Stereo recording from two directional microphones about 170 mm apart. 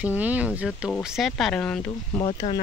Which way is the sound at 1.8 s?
25° left (ahead or behind).